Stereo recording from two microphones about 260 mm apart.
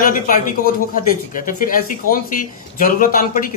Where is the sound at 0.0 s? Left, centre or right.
Left.